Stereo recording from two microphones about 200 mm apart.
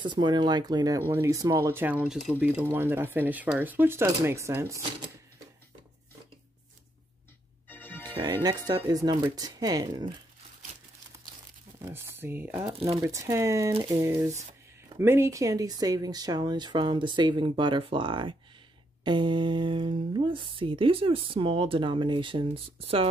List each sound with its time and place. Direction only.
0.0 s speech: 20° right (ahead or behind)
7.6 s music: 10° left (ahead or behind)
8.1 s speech: 20° right (ahead or behind)
11.8 s speech: 10° right (ahead or behind)
12.7 s speech: 30° right (ahead or behind)
13.0 s speech: 15° right (ahead or behind)